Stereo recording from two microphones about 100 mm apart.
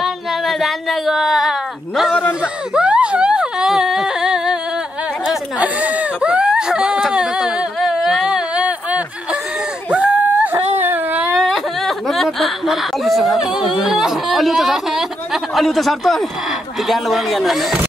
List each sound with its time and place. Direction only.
0.0 s a sound: centre (ahead or behind); by 11.2 s 20° right (ahead or behind)
11.3 s whimper: centre (ahead or behind)
13.4 s speech: 5° right (ahead or behind)